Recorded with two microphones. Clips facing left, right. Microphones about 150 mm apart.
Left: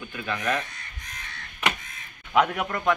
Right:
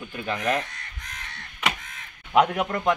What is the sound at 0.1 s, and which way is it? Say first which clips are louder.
Speech: right 2 dB; 25° right (ahead or behind).